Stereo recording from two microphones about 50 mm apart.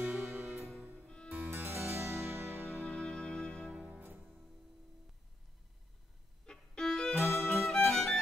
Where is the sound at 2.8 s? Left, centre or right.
Left.